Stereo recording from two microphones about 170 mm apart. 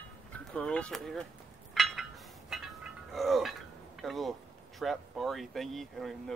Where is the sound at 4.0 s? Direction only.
Centre (ahead or behind).